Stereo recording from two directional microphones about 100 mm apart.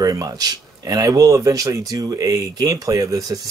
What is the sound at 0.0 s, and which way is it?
Speech, 40° right (ahead or behind).